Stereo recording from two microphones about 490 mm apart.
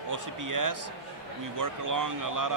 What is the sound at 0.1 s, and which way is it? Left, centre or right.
A man's voice, right.